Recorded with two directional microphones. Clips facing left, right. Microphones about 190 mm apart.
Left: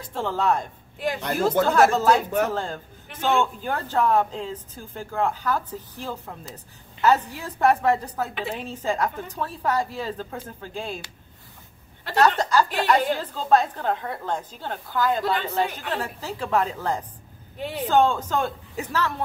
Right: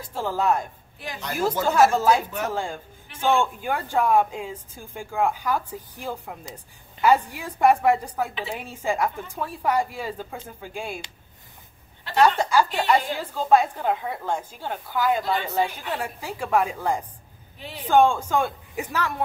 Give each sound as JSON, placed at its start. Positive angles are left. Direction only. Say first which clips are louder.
{"t": 0.1, "sound": "a man's voice", "louder": "even", "side_deg": -10}
{"t": 0.9, "sound": "a woman's voice", "louder": "left 6 dB", "side_deg": 55}
{"t": 1.7, "sound": "a man's voice", "louder": "right 2 dB", "side_deg": -10}
{"t": 12.2, "sound": "a woman's voice", "louder": "right 1 dB", "side_deg": -10}
{"t": 17.6, "sound": "speech", "louder": "left 9 dB", "side_deg": 55}
{"t": 17.8, "sound": "a man's voice", "louder": "right 2 dB", "side_deg": -10}